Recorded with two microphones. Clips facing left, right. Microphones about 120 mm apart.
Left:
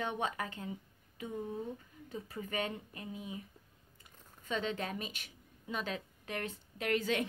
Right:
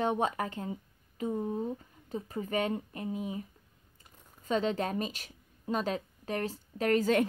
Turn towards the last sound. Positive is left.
turn(degrees=-40)  # may be behind; listen again after turning